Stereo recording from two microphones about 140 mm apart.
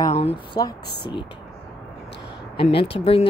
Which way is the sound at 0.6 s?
30° left (ahead or behind).